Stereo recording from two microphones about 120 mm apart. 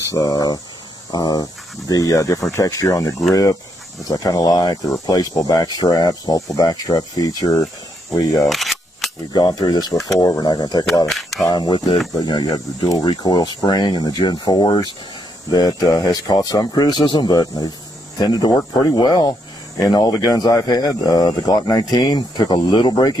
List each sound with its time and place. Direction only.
0.1 s speech: 30° left (ahead or behind)
8.5 s single-lens reflex camera: centre (ahead or behind)
9.3 s speech: 35° left (ahead or behind)
11.1 s speech: centre (ahead or behind)
11.4 s speech: 35° left (ahead or behind)